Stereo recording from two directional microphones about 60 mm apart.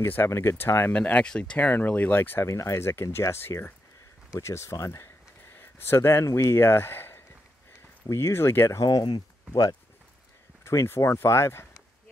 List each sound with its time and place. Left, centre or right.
0.3 s speech: left
0.9 s speech: left
2.4 s speech: left
4.7 s speech: left
5.0 s a sound: left
6.2 s speech: left
8.6 s speech: left
9.5 s speech: left
10.6 s speech: left